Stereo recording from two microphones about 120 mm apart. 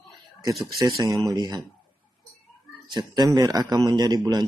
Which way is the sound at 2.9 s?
35° right (ahead or behind).